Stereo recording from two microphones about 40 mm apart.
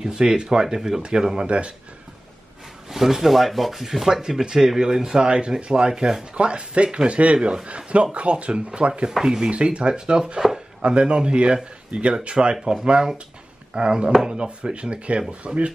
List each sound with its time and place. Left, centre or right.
0.0 s speech: centre
2.9 s rub: centre
4.2 s speech: centre
6.3 s speech: right
9.2 s speech: centre
9.5 s speech: right